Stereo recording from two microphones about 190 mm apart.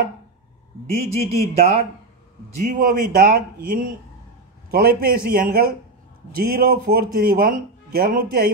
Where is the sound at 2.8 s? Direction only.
50° right (ahead or behind).